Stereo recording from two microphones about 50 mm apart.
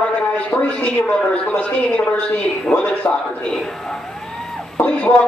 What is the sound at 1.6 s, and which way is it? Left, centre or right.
Speech, left.